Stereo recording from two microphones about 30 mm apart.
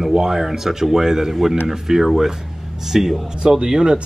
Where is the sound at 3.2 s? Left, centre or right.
Right.